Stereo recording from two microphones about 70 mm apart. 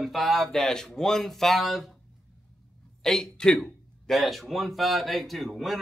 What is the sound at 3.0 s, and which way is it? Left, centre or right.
Speech, centre.